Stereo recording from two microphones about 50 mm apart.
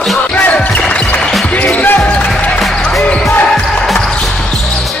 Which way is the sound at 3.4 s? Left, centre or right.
Centre.